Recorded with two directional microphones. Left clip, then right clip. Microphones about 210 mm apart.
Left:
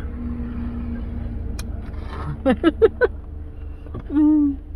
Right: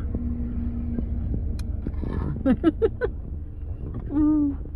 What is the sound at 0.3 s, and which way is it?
Vehicle, 20° left (ahead or behind).